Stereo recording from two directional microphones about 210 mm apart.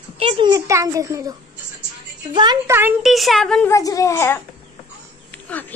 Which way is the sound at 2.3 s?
20° right (ahead or behind).